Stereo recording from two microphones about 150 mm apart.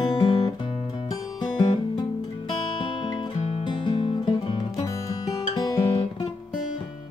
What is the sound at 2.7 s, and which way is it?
Music, 30° left (ahead or behind).